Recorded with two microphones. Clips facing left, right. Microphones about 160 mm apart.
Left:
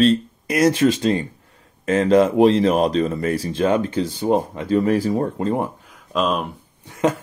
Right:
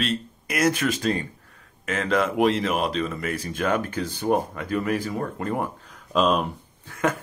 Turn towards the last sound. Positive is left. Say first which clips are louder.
# left 5 dB
turn(degrees=20)  # may be behind; listen again after turning